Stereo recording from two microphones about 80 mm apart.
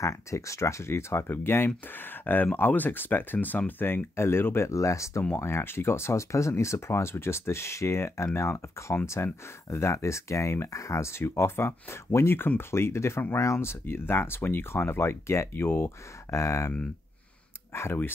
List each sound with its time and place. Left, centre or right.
0.0 s speech: left
16.3 s speech: left
17.7 s speech: left